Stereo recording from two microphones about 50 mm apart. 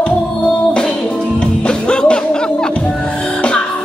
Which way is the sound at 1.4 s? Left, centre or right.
Centre.